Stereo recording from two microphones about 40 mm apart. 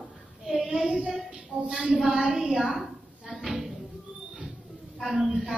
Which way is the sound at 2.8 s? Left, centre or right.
Centre.